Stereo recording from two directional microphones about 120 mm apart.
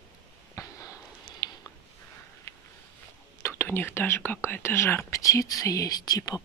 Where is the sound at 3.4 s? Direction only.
20° left (ahead or behind).